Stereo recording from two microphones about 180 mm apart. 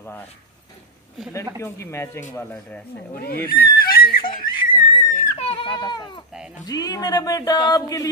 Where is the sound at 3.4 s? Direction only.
55° left (ahead or behind).